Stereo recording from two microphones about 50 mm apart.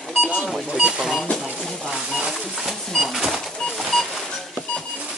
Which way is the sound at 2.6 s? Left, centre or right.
Centre.